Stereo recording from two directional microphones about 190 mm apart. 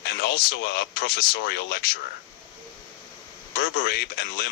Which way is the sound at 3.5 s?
60° left (ahead or behind).